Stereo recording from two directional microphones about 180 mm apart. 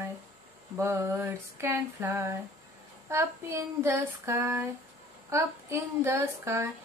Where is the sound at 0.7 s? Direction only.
15° right (ahead or behind).